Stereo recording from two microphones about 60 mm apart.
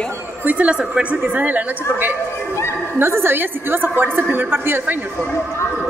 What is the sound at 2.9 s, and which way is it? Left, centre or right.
A woman's voice, right.